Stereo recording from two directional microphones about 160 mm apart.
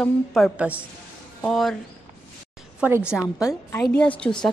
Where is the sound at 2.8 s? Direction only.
10° right (ahead or behind).